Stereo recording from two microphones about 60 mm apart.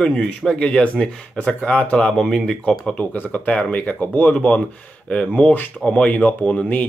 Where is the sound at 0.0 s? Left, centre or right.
Centre.